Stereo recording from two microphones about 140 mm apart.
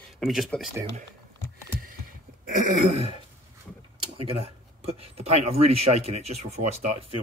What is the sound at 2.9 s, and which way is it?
Speech, 45° right (ahead or behind).